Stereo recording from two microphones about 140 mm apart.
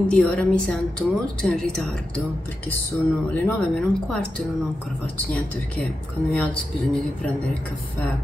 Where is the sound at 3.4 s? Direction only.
10° left (ahead or behind).